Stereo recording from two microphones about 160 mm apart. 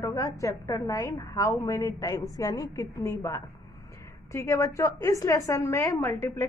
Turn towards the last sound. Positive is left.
turn(degrees=15)  # may be behind; listen again after turning